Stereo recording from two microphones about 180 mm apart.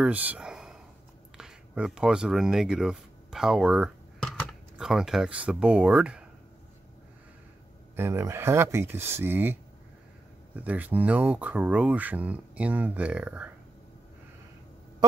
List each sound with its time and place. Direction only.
0.0 s speech: 10° right (ahead or behind)
7.9 s speech: 15° right (ahead or behind)